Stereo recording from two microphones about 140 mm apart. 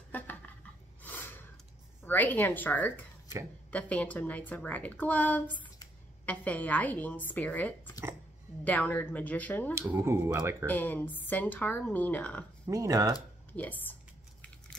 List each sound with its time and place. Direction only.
1.0 s snort: 15° left (ahead or behind)
2.0 s a woman's voice: 15° left (ahead or behind)
9.8 s speech: 15° right (ahead or behind)
10.7 s a woman's voice: 10° left (ahead or behind)
12.6 s speech: 25° right (ahead or behind)
13.5 s a woman's voice: 10° left (ahead or behind)